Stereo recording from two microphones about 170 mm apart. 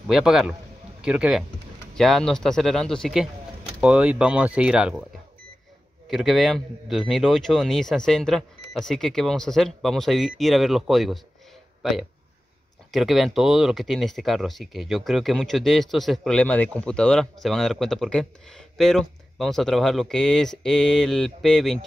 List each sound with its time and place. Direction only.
0.0 s speech: 5° right (ahead or behind)
6.0 s speech: centre (ahead or behind)